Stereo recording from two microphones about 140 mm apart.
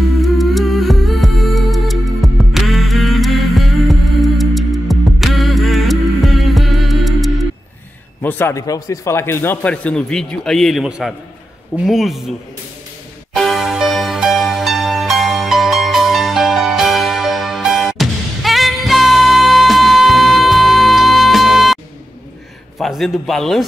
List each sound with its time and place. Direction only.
0.2 s music: centre (ahead or behind)
8.2 s speech: 15° left (ahead or behind); by 12.3 s centre (ahead or behind)
13.3 s music: centre (ahead or behind)
22.8 s a man's voice: centre (ahead or behind)